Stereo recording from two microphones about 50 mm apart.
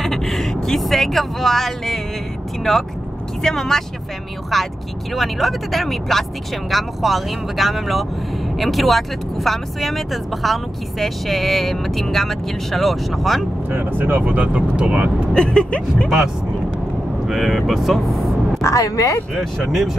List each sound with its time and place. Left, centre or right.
0.0 s vehicle: centre
0.7 s speech: centre
13.7 s speech: right
15.3 s speech: centre
17.3 s speech: centre
18.6 s speech: left
19.6 s speech: centre